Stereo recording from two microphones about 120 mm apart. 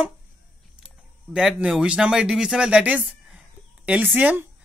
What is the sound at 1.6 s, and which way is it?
Speech, 5° right (ahead or behind).